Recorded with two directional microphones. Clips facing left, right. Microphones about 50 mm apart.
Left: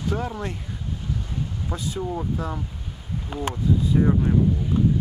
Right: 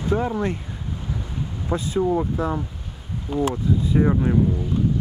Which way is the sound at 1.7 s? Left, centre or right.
Right.